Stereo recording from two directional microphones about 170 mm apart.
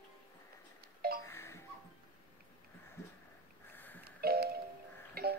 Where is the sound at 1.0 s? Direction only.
65° right (ahead or behind).